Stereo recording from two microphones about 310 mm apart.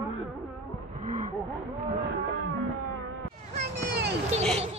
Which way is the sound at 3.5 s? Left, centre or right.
Right.